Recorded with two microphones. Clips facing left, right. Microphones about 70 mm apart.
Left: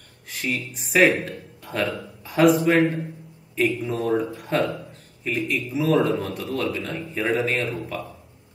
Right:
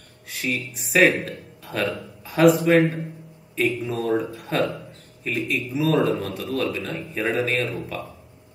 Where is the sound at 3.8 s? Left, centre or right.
Centre.